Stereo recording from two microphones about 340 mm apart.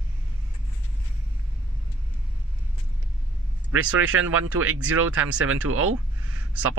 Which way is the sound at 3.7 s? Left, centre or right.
Right.